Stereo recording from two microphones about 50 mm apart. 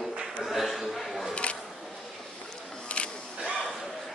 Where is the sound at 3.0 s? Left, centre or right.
Left.